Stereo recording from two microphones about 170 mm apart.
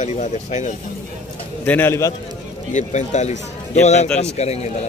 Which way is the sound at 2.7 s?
45° left (ahead or behind).